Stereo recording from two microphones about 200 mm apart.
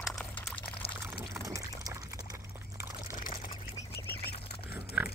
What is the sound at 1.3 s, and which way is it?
Water, 15° right (ahead or behind).